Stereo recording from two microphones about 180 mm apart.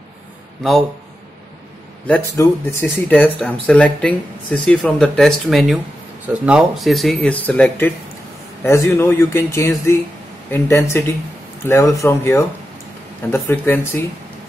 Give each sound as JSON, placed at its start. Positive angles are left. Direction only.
{"t": 2.3, "sound": "speech", "side_deg": 15}